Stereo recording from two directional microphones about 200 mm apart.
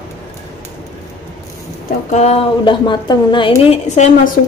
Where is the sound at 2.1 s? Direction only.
30° left (ahead or behind).